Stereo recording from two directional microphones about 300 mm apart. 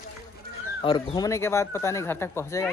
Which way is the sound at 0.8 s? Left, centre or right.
Centre.